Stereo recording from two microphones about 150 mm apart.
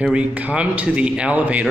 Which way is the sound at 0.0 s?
5° right (ahead or behind).